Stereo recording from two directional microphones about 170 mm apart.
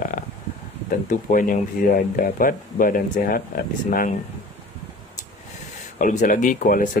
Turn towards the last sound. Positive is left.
turn(degrees=50)  # may be behind; listen again after turning